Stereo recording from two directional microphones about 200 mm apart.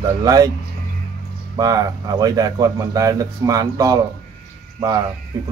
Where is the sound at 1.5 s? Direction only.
20° right (ahead or behind).